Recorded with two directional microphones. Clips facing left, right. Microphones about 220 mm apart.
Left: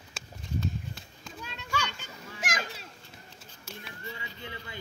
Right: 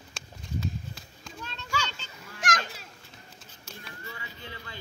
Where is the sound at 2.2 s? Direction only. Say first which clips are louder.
Right 4 dB; 5° left (ahead or behind).